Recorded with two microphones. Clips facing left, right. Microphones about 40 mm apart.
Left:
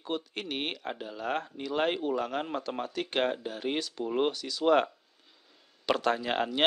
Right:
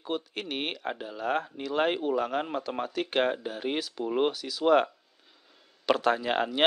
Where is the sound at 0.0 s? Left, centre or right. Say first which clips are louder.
Right 1 dB; centre.